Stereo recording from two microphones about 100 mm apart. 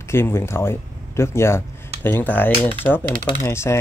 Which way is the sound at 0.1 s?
25° left (ahead or behind).